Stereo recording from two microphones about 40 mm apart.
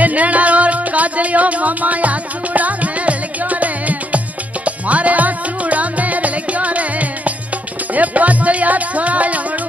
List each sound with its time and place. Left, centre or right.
0.0 s music: right